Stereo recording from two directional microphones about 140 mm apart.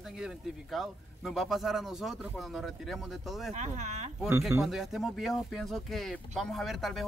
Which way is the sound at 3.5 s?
55° right (ahead or behind).